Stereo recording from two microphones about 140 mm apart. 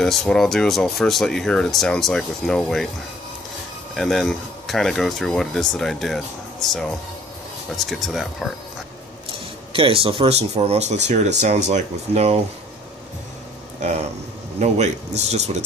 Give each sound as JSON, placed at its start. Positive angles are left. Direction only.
{"t": 0.0, "sound": "speech", "side_deg": 5}
{"t": 3.9, "sound": "speech", "side_deg": 0}
{"t": 9.7, "sound": "speech", "side_deg": -40}
{"t": 14.6, "sound": "speech", "side_deg": -55}